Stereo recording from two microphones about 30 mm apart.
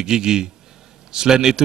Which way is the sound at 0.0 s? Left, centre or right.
Right.